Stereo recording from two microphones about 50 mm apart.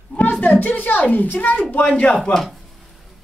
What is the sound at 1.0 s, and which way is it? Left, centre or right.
A woman's voice, left.